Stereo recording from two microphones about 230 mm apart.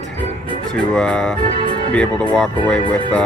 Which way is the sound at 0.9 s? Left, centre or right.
Centre.